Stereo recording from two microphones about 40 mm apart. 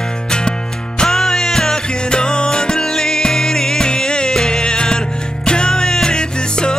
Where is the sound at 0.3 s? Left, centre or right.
Left.